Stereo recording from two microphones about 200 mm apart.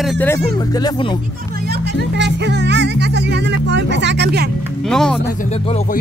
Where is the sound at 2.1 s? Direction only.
60° right (ahead or behind).